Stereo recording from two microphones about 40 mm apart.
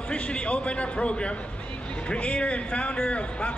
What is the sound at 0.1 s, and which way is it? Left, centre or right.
A man's voice, left.